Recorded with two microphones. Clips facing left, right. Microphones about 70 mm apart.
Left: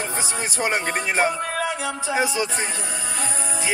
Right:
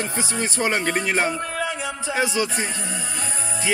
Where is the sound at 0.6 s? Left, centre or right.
Centre.